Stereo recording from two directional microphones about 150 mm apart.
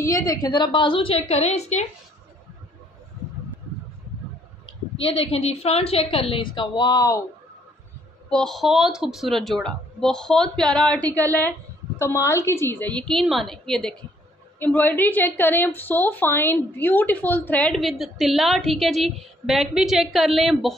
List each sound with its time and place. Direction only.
0.0 s a woman's voice: 20° left (ahead or behind); by 1.9 s 50° left (ahead or behind)
5.0 s a woman's voice: 40° left (ahead or behind); by 7.2 s 20° left (ahead or behind)
8.3 s a woman's voice: 5° left (ahead or behind)